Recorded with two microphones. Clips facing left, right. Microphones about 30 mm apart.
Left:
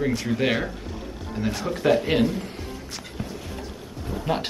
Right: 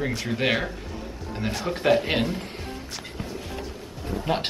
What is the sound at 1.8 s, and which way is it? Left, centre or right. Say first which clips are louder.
Speech: even; centre.